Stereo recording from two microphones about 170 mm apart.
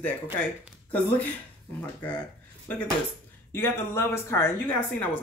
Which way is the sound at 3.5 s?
15° left (ahead or behind).